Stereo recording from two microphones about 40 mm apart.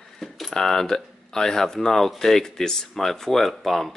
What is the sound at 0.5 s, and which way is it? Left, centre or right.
Speech, centre.